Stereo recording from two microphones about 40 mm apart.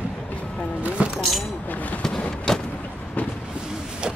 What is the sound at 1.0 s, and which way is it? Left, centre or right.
Vehicle, right.